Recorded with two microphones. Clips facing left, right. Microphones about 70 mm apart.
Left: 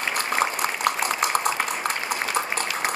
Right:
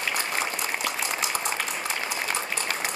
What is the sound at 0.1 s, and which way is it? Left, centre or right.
Boiling, left.